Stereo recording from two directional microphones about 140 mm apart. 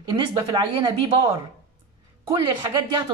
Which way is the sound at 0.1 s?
35° right (ahead or behind).